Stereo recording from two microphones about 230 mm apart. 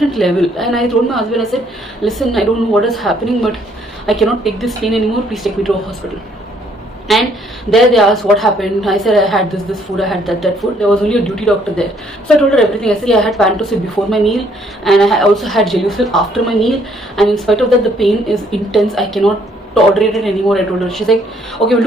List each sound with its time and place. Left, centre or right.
0.0 s a woman's voice: centre
7.1 s a woman's voice: centre